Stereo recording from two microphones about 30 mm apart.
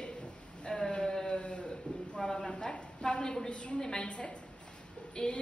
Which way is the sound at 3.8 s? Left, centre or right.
Left.